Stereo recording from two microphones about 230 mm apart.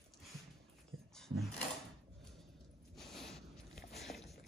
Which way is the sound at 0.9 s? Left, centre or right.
Right.